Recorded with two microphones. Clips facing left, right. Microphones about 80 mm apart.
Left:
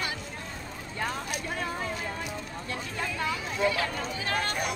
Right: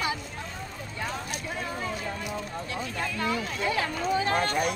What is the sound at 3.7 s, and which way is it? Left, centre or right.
Speech, right.